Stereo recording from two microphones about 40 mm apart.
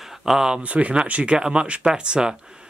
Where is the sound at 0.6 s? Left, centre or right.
Right.